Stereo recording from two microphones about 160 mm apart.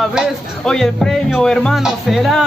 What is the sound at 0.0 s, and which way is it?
Speech, centre (ahead or behind).